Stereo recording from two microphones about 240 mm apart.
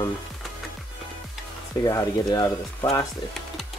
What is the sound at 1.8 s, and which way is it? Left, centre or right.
Speech, centre.